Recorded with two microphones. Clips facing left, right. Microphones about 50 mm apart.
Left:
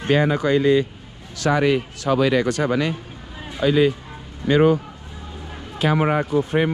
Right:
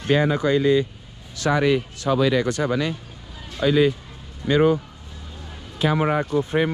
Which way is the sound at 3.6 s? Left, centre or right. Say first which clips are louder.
Left 1 dB; left.